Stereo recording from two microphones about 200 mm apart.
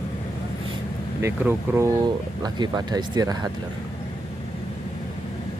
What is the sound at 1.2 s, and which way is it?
Speech, 10° right (ahead or behind).